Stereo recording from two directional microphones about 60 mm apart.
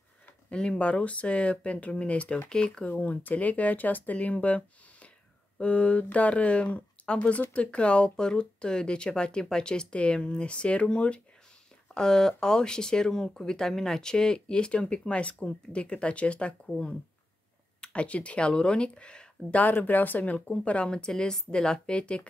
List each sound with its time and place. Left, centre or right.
0.5 s speech: centre
2.8 s speech: left